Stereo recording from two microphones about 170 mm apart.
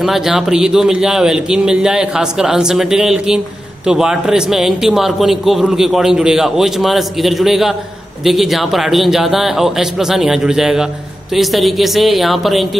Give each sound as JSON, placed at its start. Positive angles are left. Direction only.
{"t": 0.0, "sound": "a man's voice", "side_deg": 0}